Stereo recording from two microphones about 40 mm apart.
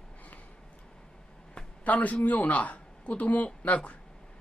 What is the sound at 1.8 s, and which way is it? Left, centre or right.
A man's voice, left.